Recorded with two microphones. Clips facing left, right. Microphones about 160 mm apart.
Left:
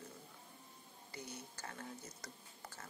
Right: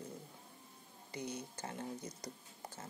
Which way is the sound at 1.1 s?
20° right (ahead or behind).